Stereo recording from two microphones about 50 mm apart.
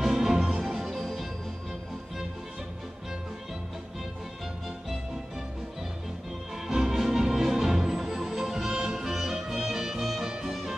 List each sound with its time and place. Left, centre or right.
0.0 s music: centre
6.5 s music: centre